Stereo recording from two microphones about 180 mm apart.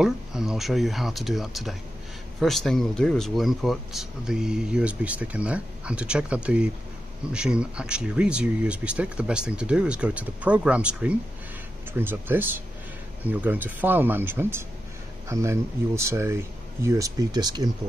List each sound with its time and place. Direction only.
0.0 s speech: 5° right (ahead or behind); by 17.6 s 20° right (ahead or behind)